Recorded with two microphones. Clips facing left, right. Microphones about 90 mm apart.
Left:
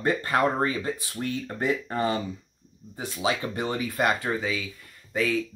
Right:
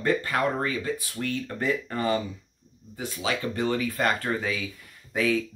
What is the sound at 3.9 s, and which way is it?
Speech, 10° left (ahead or behind).